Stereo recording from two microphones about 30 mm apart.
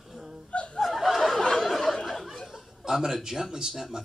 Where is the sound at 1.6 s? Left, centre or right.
Centre.